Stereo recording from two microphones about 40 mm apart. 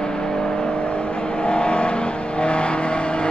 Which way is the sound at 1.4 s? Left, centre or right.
Left.